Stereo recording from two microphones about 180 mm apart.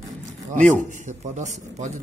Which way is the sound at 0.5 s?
45° right (ahead or behind).